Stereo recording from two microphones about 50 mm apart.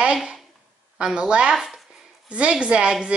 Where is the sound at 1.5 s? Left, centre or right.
Centre.